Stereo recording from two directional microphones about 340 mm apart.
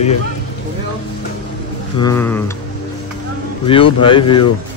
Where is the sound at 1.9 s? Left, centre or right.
Centre.